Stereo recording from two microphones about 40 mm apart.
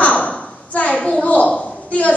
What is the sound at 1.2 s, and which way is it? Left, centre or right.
Speech, left.